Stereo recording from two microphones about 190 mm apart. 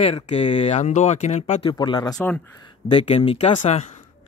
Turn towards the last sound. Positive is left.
turn(degrees=35)  # may be behind; listen again after turning